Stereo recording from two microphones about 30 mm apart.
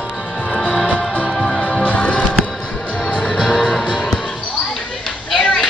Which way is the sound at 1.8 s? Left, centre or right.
Left.